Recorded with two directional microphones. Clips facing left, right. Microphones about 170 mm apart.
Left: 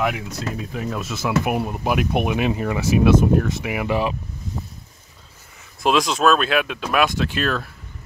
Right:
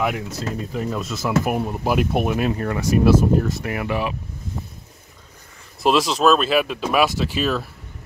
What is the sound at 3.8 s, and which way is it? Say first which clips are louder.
Speech: left 3 dB; 25° left (ahead or behind).